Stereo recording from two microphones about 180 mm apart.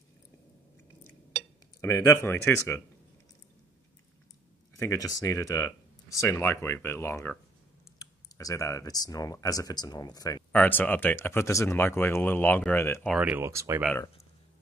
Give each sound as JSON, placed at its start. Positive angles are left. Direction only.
{"t": 1.8, "sound": "speech", "side_deg": 15}
{"t": 4.7, "sound": "speech", "side_deg": 20}
{"t": 10.5, "sound": "speech", "side_deg": 10}
{"t": 13.1, "sound": "speech", "side_deg": -5}